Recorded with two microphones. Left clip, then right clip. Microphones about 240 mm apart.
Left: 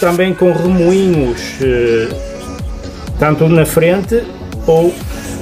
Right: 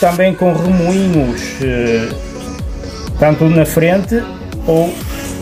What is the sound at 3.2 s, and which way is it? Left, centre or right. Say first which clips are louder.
Speech: even; centre.